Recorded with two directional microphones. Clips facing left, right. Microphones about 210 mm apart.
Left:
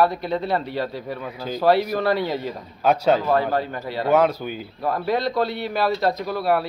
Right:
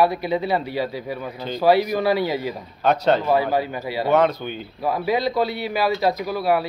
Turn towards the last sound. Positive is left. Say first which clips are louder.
# right 1 dB
turn(degrees=0)  # may be behind; listen again after turning